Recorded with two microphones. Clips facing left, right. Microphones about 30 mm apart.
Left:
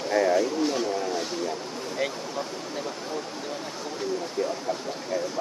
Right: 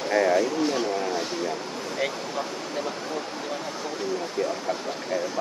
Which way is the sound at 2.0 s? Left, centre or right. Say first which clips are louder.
Right 1 dB; centre.